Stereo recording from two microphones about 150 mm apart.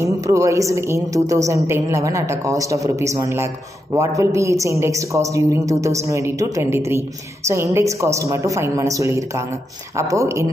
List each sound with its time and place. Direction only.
0.0 s a woman's voice: 20° right (ahead or behind)